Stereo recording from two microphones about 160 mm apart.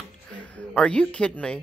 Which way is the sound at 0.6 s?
5° left (ahead or behind).